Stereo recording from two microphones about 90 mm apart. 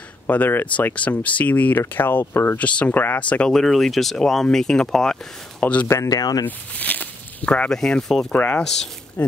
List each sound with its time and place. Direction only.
0.3 s speech: 20° left (ahead or behind)
5.9 s speech: 40° left (ahead or behind)
6.4 s speech: 20° left (ahead or behind)
8.3 s speech: 20° left (ahead or behind)